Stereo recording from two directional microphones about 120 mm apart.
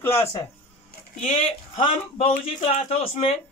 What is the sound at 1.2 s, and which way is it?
Speech, 50° left (ahead or behind).